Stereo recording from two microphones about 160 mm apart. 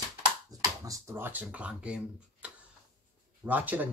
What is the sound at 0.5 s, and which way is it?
Speech, 20° right (ahead or behind).